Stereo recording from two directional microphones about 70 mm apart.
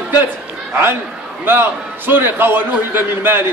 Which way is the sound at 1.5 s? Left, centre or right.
Right.